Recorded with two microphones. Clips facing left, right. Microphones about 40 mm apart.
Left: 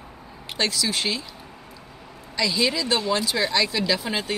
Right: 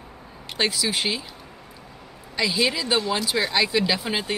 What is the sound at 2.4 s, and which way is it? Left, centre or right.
Speech, centre.